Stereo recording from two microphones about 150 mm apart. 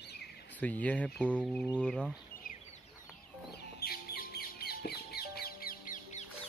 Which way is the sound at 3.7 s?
90° left.